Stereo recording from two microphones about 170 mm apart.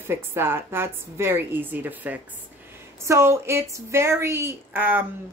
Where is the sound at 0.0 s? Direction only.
15° right (ahead or behind).